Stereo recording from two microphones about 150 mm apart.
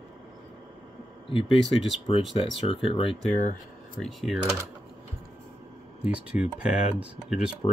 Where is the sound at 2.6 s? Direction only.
35° left (ahead or behind).